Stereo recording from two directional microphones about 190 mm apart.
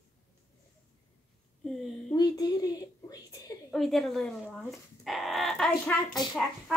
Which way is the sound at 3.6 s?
Centre (ahead or behind).